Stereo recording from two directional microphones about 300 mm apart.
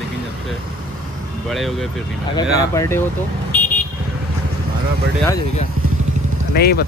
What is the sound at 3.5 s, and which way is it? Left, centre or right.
Vehicle, centre.